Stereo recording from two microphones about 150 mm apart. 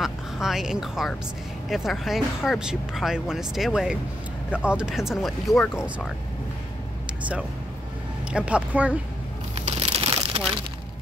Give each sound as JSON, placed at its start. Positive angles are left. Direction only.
{"t": 0.0, "sound": "speech", "side_deg": -5}
{"t": 7.1, "sound": "vehicle", "side_deg": -5}
{"t": 8.3, "sound": "speech", "side_deg": -5}
{"t": 9.8, "sound": "a sound", "side_deg": -40}